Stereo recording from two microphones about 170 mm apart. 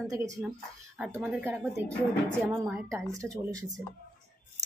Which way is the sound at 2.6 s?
15° right (ahead or behind).